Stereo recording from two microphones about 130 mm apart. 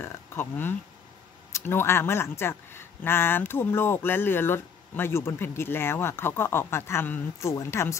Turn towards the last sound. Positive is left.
turn(degrees=20)  # may be behind; listen again after turning